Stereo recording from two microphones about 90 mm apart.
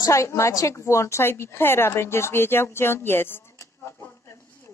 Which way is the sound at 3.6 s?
30° left (ahead or behind).